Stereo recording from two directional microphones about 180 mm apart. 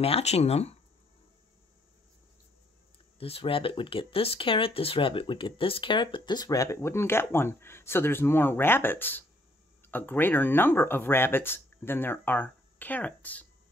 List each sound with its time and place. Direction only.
0.0 s speech: 35° left (ahead or behind)
3.2 s speech: 30° left (ahead or behind); by 13.5 s 10° left (ahead or behind)